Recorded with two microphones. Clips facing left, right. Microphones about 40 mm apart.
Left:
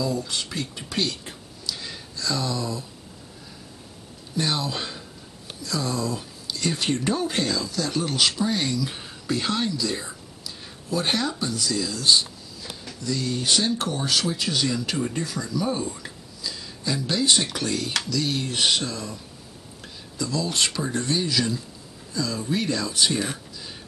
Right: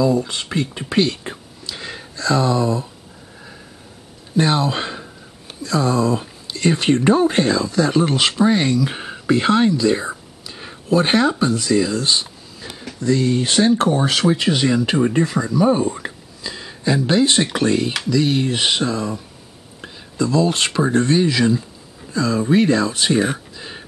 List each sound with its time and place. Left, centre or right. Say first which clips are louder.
0.0 s speech: right 9 dB; right
4.4 s speech: right 8 dB; right